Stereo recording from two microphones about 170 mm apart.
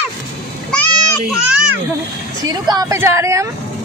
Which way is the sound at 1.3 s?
5° right (ahead or behind).